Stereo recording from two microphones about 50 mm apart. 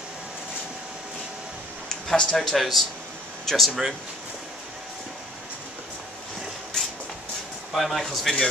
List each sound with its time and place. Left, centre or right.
1.9 s speech: centre
7.7 s speech: centre